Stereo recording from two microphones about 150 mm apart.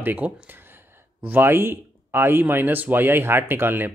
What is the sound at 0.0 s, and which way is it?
Speech, 10° right (ahead or behind).